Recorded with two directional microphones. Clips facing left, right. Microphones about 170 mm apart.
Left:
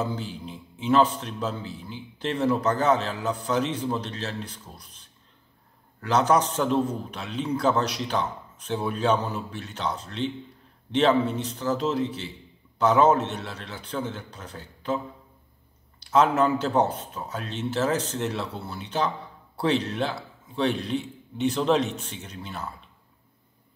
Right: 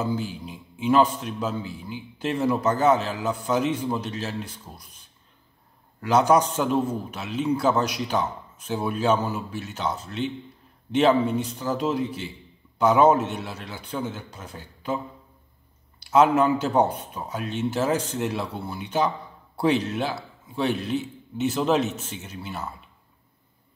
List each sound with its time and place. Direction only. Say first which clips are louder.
0.0 s a man's voice: right 3 dB; 10° right (ahead or behind)
16.0 s a man's voice: right 2 dB; 10° right (ahead or behind)